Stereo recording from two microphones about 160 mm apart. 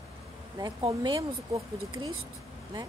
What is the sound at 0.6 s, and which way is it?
Speech, 25° right (ahead or behind).